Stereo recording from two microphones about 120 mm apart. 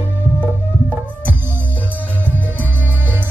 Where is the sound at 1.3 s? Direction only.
20° right (ahead or behind).